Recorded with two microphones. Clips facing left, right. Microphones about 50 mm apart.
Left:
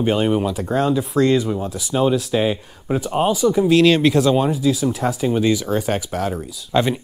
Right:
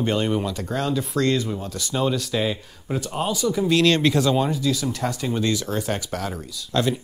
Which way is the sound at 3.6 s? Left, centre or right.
Centre.